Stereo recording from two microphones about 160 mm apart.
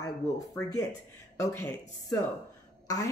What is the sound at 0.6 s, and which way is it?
Speech, 15° left (ahead or behind).